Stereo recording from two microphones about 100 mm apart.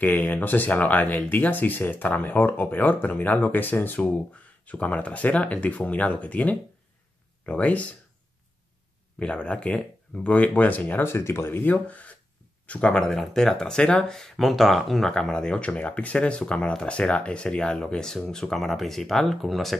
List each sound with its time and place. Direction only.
0.0 s speech: 15° left (ahead or behind)
9.2 s speech: 10° left (ahead or behind)